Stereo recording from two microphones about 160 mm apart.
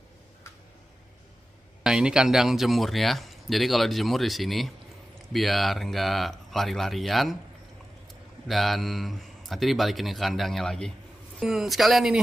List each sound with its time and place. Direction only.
1.8 s speech: 5° right (ahead or behind)
8.5 s speech: centre (ahead or behind)